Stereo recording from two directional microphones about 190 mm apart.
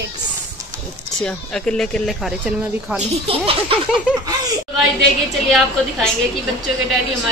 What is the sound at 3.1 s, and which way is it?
Speech, 30° right (ahead or behind).